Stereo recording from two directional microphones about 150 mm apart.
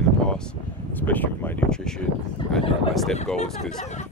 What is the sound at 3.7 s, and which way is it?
Speech, 50° left (ahead or behind).